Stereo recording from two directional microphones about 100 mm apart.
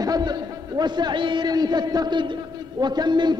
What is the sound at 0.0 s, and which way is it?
A man's voice, 40° right (ahead or behind).